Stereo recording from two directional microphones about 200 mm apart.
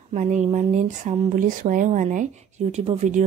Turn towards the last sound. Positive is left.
turn(degrees=-35)  # may be behind; listen again after turning